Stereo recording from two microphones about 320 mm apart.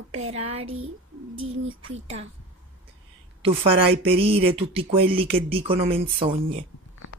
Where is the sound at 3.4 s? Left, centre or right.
Centre.